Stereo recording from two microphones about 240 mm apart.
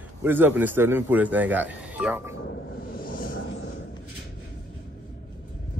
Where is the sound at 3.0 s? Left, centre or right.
Left.